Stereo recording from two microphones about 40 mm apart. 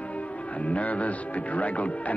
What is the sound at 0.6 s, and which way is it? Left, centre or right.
Music, left.